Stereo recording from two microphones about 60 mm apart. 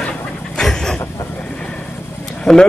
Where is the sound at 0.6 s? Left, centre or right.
Centre.